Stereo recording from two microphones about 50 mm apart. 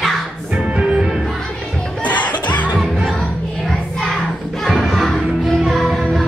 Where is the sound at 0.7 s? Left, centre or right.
Centre.